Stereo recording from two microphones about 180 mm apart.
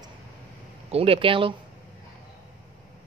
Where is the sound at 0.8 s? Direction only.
30° right (ahead or behind).